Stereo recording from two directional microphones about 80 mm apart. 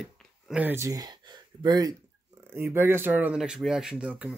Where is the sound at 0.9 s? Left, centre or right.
Right.